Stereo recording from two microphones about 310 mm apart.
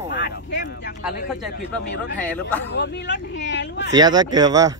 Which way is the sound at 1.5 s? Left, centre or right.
Left.